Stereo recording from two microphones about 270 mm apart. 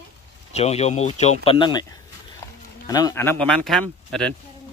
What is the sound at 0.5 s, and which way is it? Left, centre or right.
Speech, left.